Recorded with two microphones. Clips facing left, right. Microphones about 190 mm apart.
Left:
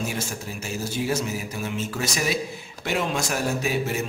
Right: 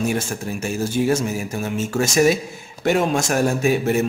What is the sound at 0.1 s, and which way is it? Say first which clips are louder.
A man's voice: right 7 dB; 50° right (ahead or behind).